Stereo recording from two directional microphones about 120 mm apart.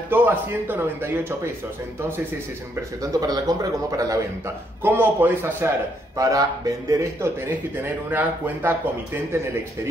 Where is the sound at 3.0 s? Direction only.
30° right (ahead or behind).